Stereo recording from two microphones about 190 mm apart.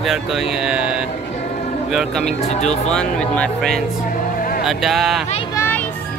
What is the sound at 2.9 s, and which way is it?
Speech, 5° left (ahead or behind).